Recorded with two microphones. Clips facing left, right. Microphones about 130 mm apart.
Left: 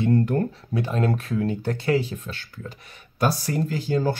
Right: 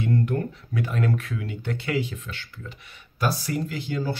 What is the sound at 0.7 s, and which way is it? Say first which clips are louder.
Speech: left 2 dB; 30° left (ahead or behind).